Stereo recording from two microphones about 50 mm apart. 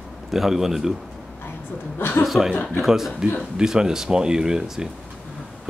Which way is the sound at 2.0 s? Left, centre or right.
Left.